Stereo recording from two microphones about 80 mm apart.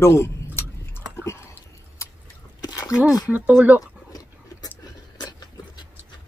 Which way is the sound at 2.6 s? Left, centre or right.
Left.